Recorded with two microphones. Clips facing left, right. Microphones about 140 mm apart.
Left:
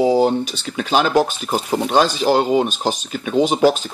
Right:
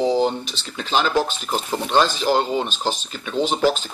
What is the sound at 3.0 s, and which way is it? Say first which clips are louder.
Speech: left 7 dB; 50° left (ahead or behind).